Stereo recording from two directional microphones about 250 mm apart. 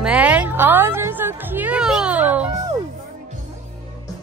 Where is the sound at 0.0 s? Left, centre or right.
Centre.